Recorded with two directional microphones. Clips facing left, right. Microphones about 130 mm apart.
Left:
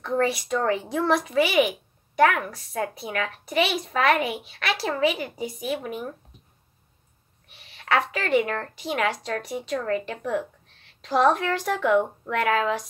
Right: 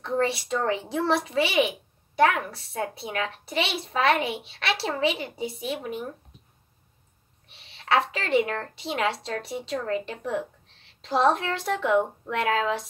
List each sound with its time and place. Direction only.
0.0 s a child's voice: 25° right (ahead or behind)
7.4 s a child's voice: 30° right (ahead or behind)